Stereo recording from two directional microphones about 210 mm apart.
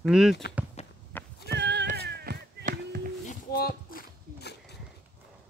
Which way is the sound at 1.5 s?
55° right (ahead or behind).